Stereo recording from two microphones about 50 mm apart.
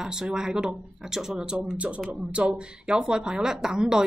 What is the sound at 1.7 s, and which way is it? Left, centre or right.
Speech, right.